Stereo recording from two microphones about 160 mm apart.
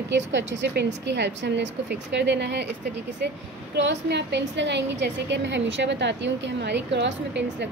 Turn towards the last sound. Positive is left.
turn(degrees=-90)